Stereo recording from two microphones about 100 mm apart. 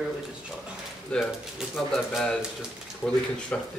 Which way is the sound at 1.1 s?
10° left (ahead or behind).